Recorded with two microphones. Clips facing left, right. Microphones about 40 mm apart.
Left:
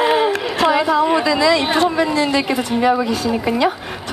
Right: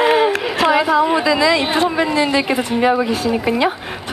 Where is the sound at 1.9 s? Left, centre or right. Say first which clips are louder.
Right 1 dB; centre.